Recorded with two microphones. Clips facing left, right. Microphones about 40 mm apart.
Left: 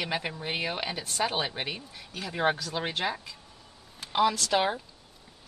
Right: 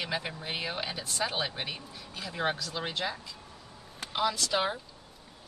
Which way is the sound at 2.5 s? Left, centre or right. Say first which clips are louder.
Left 3 dB; left.